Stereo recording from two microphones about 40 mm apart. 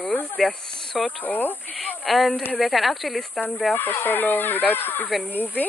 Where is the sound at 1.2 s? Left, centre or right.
Left.